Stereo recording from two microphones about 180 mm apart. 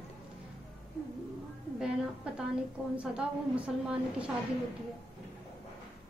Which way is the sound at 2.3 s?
5° right (ahead or behind).